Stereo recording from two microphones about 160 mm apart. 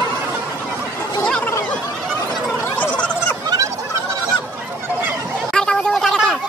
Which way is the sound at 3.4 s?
25° right (ahead or behind).